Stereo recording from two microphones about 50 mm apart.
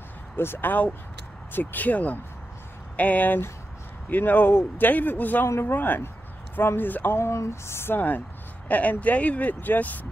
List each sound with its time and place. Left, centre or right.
0.4 s speech: left
0.7 s speech: left
4.5 s speech: left
4.8 s speech: left
7.2 s a sound: left
8.6 s speech: left